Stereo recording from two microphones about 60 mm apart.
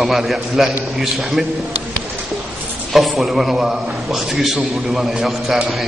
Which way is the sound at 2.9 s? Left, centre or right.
Centre.